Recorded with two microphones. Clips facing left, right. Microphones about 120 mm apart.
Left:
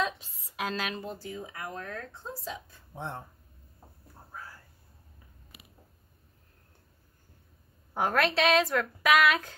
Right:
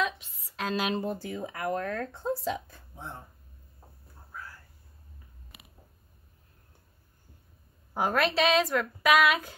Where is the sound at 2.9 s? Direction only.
70° left (ahead or behind).